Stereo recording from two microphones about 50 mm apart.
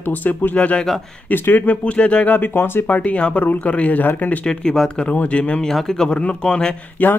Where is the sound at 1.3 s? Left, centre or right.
Left.